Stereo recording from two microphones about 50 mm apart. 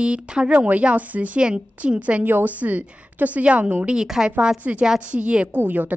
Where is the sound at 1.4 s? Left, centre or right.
Centre.